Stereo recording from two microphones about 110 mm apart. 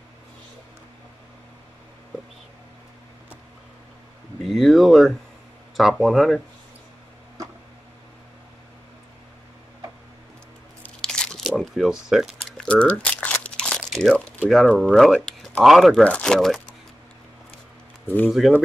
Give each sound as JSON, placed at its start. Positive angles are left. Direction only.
{"t": 4.5, "sound": "speech", "side_deg": 0}
{"t": 11.0, "sound": "biting", "side_deg": 5}
{"t": 11.6, "sound": "speech", "side_deg": 0}
{"t": 12.4, "sound": "crumpling", "side_deg": 10}
{"t": 13.9, "sound": "speech", "side_deg": 0}
{"t": 18.0, "sound": "speech", "side_deg": 20}